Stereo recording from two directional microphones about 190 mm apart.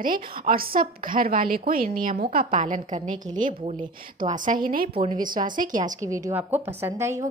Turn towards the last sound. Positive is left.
turn(degrees=-15)  # may be behind; listen again after turning